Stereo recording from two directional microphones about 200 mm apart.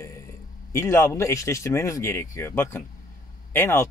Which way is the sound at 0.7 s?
15° left (ahead or behind).